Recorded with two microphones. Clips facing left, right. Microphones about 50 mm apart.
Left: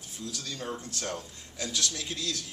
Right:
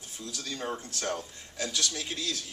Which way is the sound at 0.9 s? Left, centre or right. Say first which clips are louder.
Right 2 dB; centre.